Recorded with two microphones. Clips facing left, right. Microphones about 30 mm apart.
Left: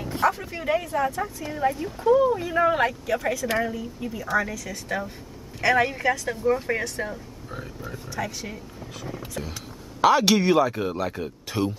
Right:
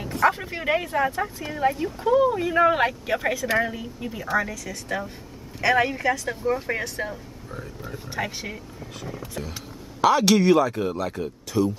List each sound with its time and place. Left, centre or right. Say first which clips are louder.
0.3 s speech: right 1 dB; right
3.4 s speech: right 4 dB; centre
3.7 s speech: left 1 dB; centre
4.4 s speech: left 1 dB; centre
8.1 s speech: right 2 dB; right
10.0 s speech: right 1 dB; centre
11.5 s speech: right 3 dB; left